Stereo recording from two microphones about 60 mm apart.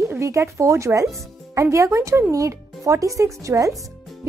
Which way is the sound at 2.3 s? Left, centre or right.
Right.